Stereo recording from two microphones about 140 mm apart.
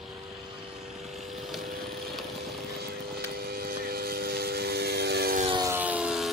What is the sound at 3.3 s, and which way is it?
Vehicle, 90° right.